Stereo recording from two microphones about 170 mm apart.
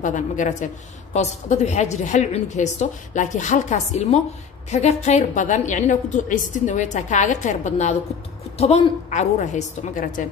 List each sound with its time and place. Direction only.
0.0 s a woman's voice: 50° left (ahead or behind)